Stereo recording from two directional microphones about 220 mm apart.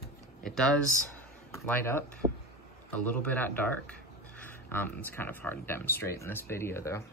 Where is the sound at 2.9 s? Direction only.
5° left (ahead or behind).